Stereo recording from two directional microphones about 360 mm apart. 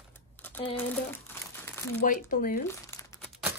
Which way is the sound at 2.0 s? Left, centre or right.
Left.